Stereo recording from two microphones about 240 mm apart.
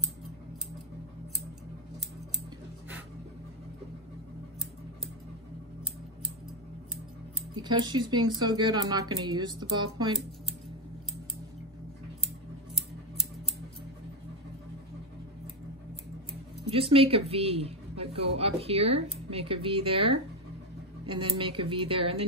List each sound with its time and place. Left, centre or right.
7.5 s speech: centre
16.9 s a woman's voice: right